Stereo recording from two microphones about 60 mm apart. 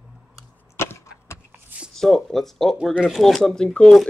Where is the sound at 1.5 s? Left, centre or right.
Right.